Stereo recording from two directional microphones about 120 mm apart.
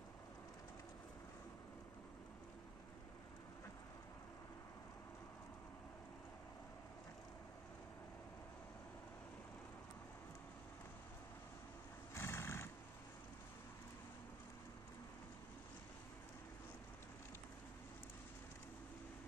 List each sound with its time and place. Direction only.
12.1 s horse: 20° left (ahead or behind)